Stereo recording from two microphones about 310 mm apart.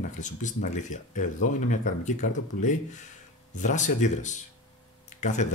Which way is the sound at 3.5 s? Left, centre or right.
Left.